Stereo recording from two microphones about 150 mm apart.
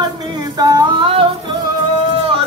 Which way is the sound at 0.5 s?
25° right (ahead or behind).